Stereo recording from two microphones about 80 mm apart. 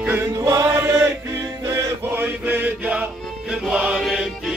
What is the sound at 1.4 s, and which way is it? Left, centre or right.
Music, right.